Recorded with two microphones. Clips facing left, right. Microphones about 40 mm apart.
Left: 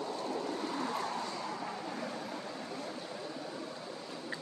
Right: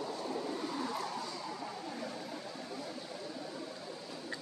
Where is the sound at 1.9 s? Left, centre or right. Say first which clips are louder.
Left 2 dB; left.